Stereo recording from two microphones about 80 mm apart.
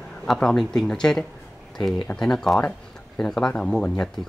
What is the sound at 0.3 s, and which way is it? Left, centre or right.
Speech, centre.